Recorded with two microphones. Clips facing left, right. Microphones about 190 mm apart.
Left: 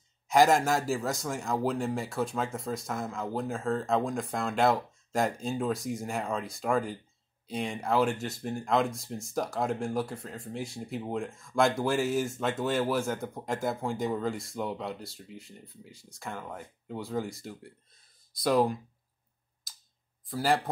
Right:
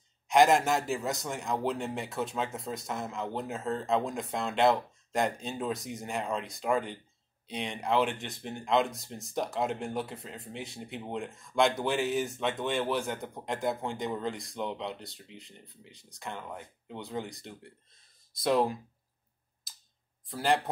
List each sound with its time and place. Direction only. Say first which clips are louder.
0.3 s speech: even; centre (ahead or behind)
15.3 s speech: left 4 dB; 45° left (ahead or behind)
16.1 s speech: left 1 dB; centre (ahead or behind)
20.2 s speech: left 1 dB; centre (ahead or behind)